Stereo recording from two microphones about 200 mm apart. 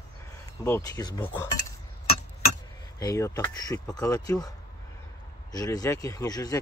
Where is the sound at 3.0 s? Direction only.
15° left (ahead or behind).